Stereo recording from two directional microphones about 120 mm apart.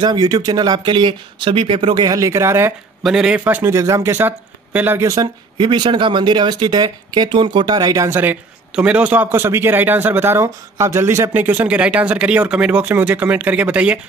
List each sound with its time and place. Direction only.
0.0 s speech: 35° right (ahead or behind)
3.0 s a man's voice: 5° right (ahead or behind); by 5.3 s 25° right (ahead or behind)
5.6 s speech: 45° right (ahead or behind); by 13.9 s 10° right (ahead or behind)